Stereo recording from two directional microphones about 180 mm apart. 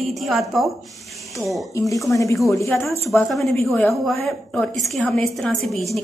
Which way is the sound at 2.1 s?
15° left (ahead or behind).